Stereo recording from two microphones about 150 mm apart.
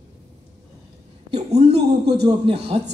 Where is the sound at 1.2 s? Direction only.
40° right (ahead or behind).